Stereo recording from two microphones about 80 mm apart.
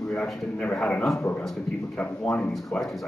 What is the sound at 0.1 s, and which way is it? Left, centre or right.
Speech, centre.